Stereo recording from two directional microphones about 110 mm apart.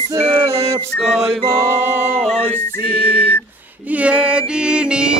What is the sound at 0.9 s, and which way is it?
Music, centre (ahead or behind).